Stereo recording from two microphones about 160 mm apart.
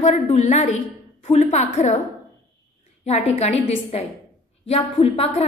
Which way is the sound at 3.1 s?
40° left (ahead or behind).